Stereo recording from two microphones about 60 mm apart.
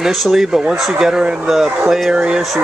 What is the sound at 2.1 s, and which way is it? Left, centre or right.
Speech, centre.